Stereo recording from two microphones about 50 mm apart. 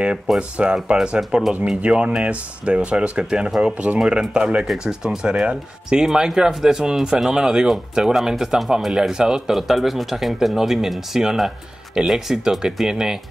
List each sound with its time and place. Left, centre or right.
0.4 s speech: right